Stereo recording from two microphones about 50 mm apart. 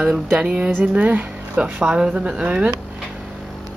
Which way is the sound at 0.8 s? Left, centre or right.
Right.